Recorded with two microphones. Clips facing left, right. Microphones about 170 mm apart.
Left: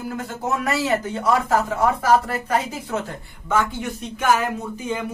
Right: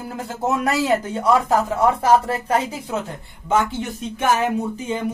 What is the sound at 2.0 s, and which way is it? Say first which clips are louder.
Speech: right 2 dB; 30° right (ahead or behind).